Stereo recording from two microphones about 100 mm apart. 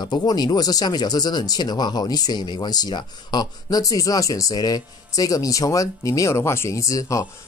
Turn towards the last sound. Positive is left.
turn(degrees=35)  # may be behind; listen again after turning